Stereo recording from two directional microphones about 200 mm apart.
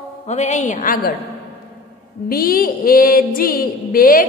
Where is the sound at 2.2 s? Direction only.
45° left (ahead or behind).